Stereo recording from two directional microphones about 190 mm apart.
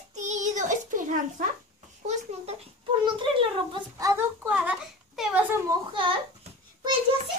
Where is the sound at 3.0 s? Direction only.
25° right (ahead or behind).